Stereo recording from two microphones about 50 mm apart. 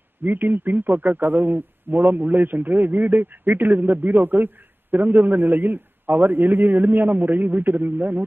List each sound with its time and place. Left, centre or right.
0.2 s a man's voice: right